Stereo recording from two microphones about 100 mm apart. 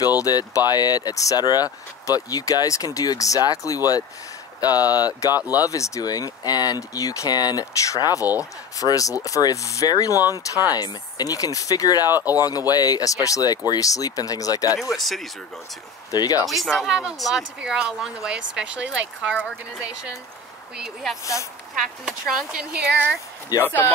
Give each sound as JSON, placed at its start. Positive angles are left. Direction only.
{"t": 0.2, "sound": "speech", "side_deg": 40}
{"t": 5.3, "sound": "speech", "side_deg": -15}
{"t": 5.6, "sound": "speech", "side_deg": 35}
{"t": 12.1, "sound": "speech", "side_deg": -20}
{"t": 12.4, "sound": "speech", "side_deg": 40}
{"t": 14.8, "sound": "speech", "side_deg": 0}
{"t": 16.1, "sound": "speech", "side_deg": 40}
{"t": 16.4, "sound": "speech", "side_deg": 0}
{"t": 19.3, "sound": "speech", "side_deg": 5}
{"t": 20.7, "sound": "speech", "side_deg": -5}
{"t": 23.6, "sound": "speech", "side_deg": 20}